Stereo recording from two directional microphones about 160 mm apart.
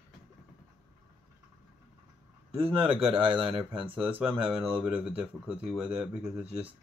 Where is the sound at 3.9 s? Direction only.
10° right (ahead or behind).